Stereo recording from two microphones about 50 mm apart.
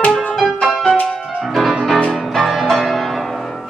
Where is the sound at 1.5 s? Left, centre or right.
Centre.